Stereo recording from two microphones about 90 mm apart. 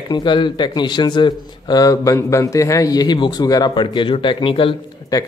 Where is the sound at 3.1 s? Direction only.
55° left (ahead or behind); by 4.7 s 75° left (ahead or behind).